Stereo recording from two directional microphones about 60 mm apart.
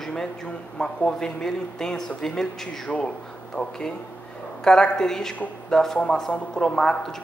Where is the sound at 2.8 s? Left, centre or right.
Centre.